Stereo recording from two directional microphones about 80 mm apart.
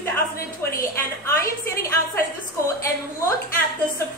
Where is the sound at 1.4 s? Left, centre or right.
Left.